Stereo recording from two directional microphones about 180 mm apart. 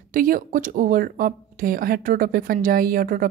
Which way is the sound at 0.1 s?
50° right (ahead or behind).